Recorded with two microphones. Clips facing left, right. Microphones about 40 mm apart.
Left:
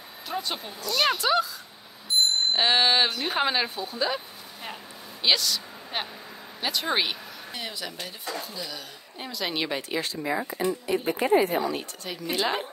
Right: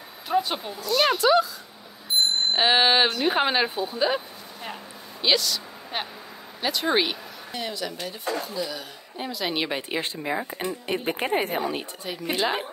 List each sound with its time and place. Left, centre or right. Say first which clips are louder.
0.3 s a woman's voice: right 7 dB; centre
2.5 s a woman's voice: right 3 dB; centre
5.2 s a woman's voice: right 1 dB; centre; by 10.7 s right
10.9 s speech: left 2 dB; right
12.0 s a woman's voice: right 2 dB; centre